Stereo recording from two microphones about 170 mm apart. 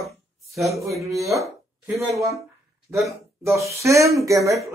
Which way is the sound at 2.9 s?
15° right (ahead or behind).